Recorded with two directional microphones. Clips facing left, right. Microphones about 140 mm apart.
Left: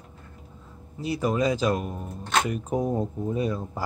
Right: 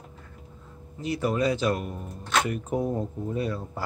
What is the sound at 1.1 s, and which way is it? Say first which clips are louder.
Speech: left 1 dB; 15° left (ahead or behind).